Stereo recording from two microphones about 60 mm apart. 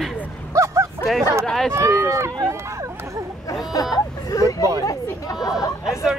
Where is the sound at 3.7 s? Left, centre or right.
Left.